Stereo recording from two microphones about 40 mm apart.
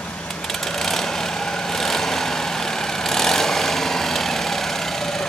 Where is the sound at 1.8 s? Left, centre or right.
Centre.